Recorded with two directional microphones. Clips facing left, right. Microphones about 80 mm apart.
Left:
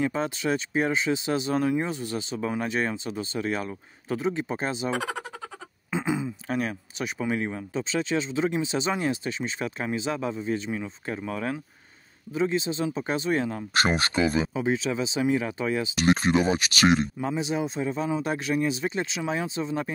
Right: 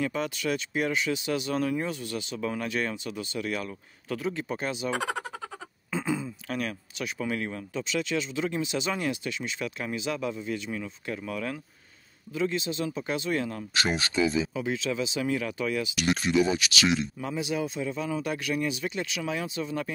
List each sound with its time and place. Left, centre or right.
0.0 s speech: left
4.9 s a sound: centre
5.9 s a sound: centre
6.4 s speech: left
13.7 s speech: left
14.5 s speech: left
17.3 s speech: left